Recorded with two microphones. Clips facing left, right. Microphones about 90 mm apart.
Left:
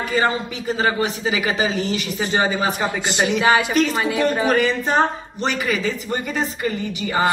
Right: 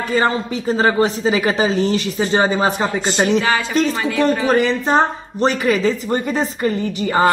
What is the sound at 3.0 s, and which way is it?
A woman's voice, 20° left (ahead or behind).